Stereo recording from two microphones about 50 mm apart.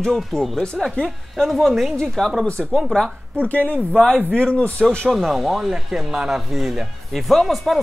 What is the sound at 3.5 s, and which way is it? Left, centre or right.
Speech, left.